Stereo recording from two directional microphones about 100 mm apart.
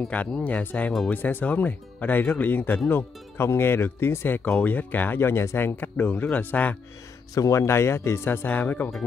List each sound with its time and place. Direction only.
0.1 s speech: 15° left (ahead or behind)
7.3 s speech: 30° left (ahead or behind); by 8.9 s 15° left (ahead or behind)